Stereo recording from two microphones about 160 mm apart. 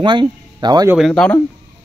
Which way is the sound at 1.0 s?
5° left (ahead or behind).